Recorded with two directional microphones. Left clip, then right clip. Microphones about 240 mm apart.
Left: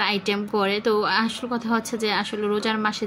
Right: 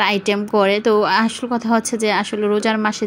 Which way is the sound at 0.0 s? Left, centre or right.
Centre.